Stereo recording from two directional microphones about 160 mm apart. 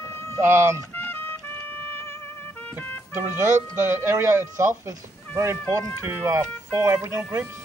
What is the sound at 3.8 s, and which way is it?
Speech, 15° right (ahead or behind).